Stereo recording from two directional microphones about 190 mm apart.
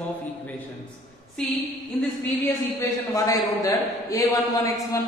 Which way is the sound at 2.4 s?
15° left (ahead or behind).